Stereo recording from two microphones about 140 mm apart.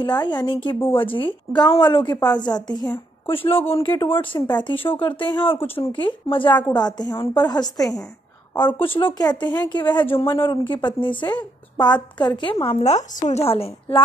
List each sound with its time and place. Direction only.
0.0 s a woman's voice: 35° left (ahead or behind)
12.8 s a woman's voice: 55° left (ahead or behind)